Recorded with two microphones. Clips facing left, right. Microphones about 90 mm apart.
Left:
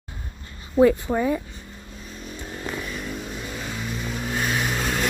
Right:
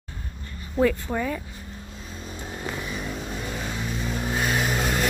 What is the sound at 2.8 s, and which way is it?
Vehicle, 15° right (ahead or behind).